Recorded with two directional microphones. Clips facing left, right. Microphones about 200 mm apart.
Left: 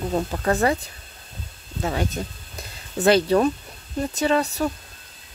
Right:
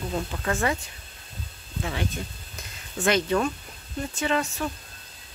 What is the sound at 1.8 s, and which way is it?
Speech, 40° left (ahead or behind).